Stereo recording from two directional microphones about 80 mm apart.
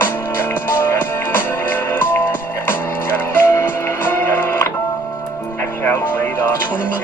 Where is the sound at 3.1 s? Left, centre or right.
Left.